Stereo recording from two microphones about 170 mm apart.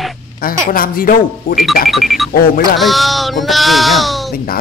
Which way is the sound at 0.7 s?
55° left (ahead or behind).